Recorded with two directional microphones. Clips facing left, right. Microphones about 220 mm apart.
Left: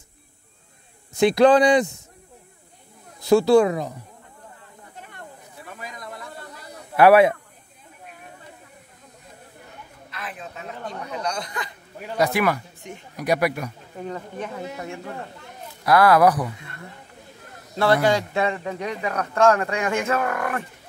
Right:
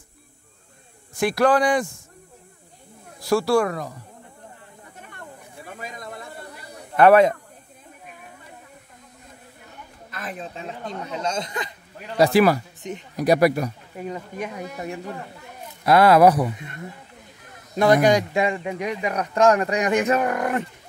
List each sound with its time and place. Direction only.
1.2 s speech: 20° left (ahead or behind)
3.3 s speech: 20° left (ahead or behind)
5.8 s a sound: 25° right (ahead or behind)
7.0 s speech: 5° left (ahead or behind)
10.1 s speech: 40° right (ahead or behind)
13.9 s a man's voice: 10° right (ahead or behind)
15.8 s a man's voice: 25° right (ahead or behind)